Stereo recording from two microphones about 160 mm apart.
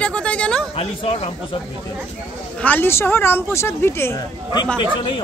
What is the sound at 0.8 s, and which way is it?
Speech, 40° left (ahead or behind).